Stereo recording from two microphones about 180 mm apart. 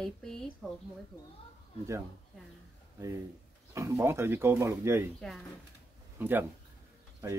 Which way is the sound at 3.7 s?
15° right (ahead or behind).